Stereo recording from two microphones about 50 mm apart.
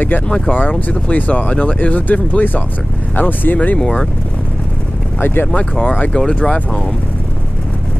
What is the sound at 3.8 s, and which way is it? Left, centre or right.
Speech, centre.